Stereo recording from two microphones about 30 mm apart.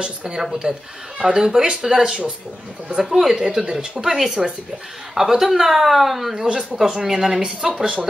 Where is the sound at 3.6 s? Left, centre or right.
Centre.